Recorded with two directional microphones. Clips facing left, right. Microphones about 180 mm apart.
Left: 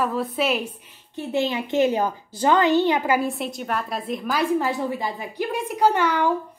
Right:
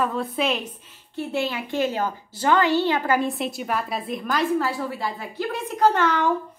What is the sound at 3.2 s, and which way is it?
A woman's voice, centre (ahead or behind).